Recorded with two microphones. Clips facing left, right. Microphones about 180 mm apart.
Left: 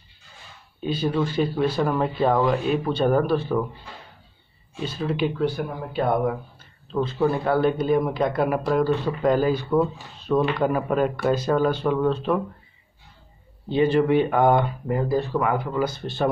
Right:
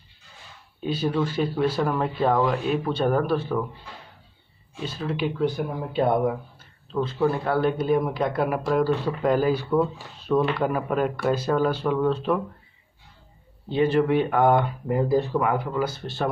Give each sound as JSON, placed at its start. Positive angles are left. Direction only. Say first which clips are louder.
{"t": 0.8, "sound": "speech", "louder": "left 1 dB", "side_deg": -5}
{"t": 4.8, "sound": "speech", "louder": "left 3 dB", "side_deg": 0}
{"t": 5.4, "sound": "speech", "louder": "even", "side_deg": -20}
{"t": 6.9, "sound": "speech", "louder": "left 1 dB", "side_deg": 0}
{"t": 13.7, "sound": "speech", "louder": "left 2 dB", "side_deg": 0}